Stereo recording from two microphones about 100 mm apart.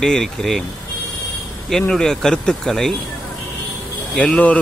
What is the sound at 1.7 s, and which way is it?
Speech, 5° left (ahead or behind).